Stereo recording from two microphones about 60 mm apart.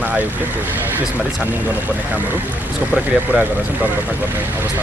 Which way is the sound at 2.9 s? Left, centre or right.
Right.